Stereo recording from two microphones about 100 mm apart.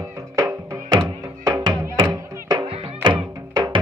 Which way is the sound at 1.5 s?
50° right (ahead or behind).